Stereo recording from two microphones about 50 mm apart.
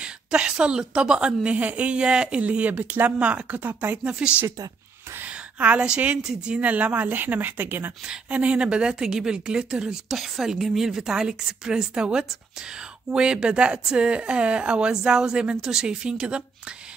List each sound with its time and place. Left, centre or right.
0.0 s a woman's voice: centre
2.8 s speech: right
3.2 s speech: right
4.0 s a woman's voice: right
5.2 s a sound: right
5.8 s a woman's voice: centre
6.6 s speech: right
8.3 s a woman's voice: right
10.0 s a woman's voice: centre